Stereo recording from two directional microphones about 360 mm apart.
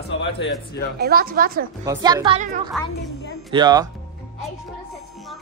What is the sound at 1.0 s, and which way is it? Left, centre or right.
Speech, right.